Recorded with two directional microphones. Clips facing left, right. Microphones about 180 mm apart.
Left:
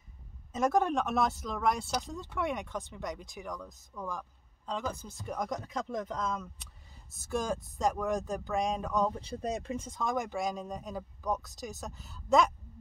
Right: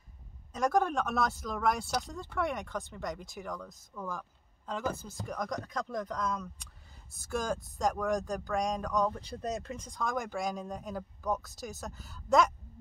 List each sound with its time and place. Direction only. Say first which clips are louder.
0.5 s speech: left 1 dB; centre (ahead or behind)
2.1 s speech: right 1 dB; 20° left (ahead or behind)
2.4 s speech: even; centre (ahead or behind)
2.7 s speech: right 1 dB; 20° left (ahead or behind)
3.4 s speech: even; centre (ahead or behind)
5.3 s speech: left 1 dB; 10° left (ahead or behind)